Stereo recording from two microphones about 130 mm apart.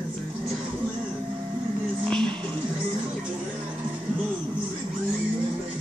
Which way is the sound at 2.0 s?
5° left (ahead or behind).